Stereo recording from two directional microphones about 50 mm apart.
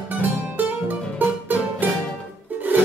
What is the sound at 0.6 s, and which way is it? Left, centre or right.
Music, right.